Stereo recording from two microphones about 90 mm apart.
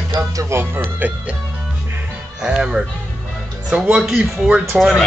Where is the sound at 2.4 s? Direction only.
10° right (ahead or behind).